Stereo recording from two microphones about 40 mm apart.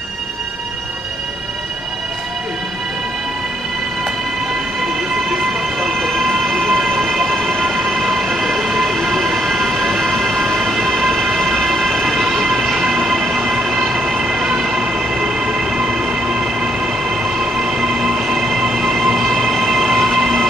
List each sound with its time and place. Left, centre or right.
5.3 s train: centre
7.5 s train: centre
18.8 s train: centre